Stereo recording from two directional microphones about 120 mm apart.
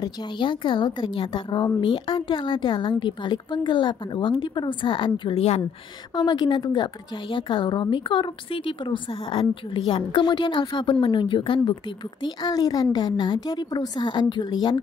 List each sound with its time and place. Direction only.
0.0 s a woman's voice: 40° left (ahead or behind)